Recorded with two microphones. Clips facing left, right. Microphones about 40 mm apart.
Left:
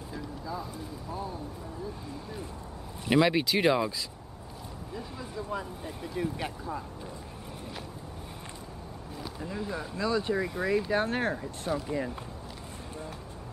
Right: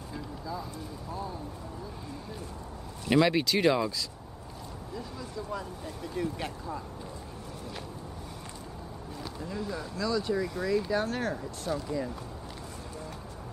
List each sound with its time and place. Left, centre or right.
3.1 s speech: centre
4.9 s speech: centre
9.4 s speech: centre